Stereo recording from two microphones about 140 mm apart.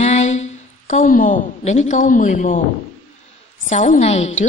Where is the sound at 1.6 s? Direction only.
55° left (ahead or behind).